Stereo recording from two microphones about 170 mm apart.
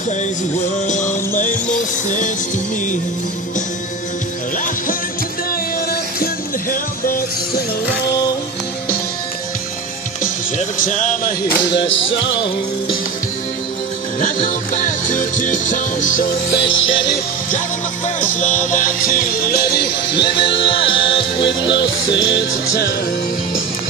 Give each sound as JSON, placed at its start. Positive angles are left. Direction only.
{"t": 0.8, "sound": "music", "side_deg": 45}
{"t": 6.7, "sound": "music", "side_deg": 55}
{"t": 10.8, "sound": "music", "side_deg": 45}
{"t": 12.1, "sound": "music", "side_deg": 90}
{"t": 14.2, "sound": "music", "side_deg": 50}
{"t": 16.9, "sound": "music", "side_deg": 90}
{"t": 18.0, "sound": "music", "side_deg": 50}
{"t": 20.2, "sound": "music", "side_deg": 30}
{"t": 21.4, "sound": "music", "side_deg": 90}